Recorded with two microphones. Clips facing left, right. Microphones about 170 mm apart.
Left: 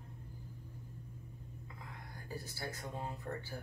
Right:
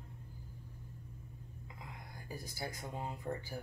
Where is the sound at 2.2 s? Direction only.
15° right (ahead or behind).